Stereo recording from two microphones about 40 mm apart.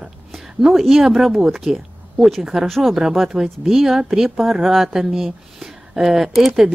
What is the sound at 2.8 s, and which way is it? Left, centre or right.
Speech, centre.